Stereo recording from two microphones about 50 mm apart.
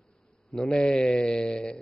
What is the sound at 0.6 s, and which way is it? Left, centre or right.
A man's voice, centre.